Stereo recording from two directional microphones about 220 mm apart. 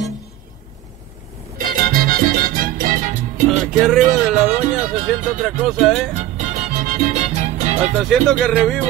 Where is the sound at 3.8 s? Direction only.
Centre (ahead or behind).